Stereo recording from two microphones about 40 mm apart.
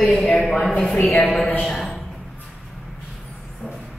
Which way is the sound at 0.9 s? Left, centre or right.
Left.